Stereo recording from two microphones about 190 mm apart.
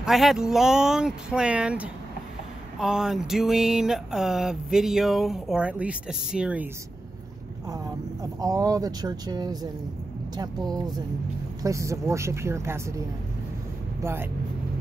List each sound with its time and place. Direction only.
0.0 s a sound: centre (ahead or behind)
7.7 s speech: 20° right (ahead or behind)
11.6 s speech: 15° right (ahead or behind)